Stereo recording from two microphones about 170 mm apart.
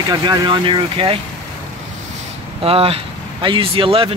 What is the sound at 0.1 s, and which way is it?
Speech, 25° right (ahead or behind).